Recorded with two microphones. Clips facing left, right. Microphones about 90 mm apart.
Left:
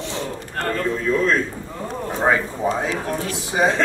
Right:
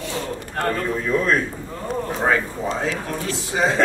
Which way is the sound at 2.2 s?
15° left (ahead or behind).